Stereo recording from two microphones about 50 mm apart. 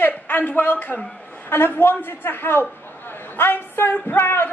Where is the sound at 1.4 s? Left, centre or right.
Left.